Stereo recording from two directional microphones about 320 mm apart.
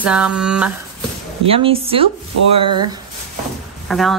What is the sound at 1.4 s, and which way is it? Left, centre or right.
A woman's voice, centre.